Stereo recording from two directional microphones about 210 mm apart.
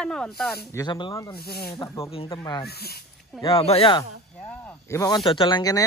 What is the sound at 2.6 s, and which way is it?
Speech, 50° left (ahead or behind).